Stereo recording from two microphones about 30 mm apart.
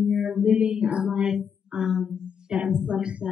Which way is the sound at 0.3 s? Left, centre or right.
Right.